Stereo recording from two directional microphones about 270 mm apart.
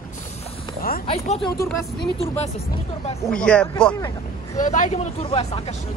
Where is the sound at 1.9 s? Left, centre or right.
Left.